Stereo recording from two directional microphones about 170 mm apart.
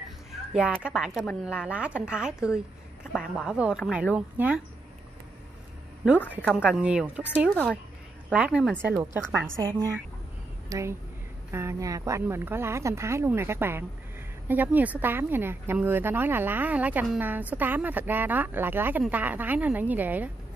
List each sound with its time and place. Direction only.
0.3 s a woman's voice: centre (ahead or behind)
6.5 s a woman's voice: 5° right (ahead or behind)
7.4 s speech: 5° left (ahead or behind)
8.3 s a woman's voice: 5° right (ahead or behind)
9.3 s speech: 15° right (ahead or behind)